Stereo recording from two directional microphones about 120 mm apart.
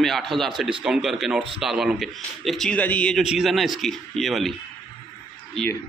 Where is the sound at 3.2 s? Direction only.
5° right (ahead or behind).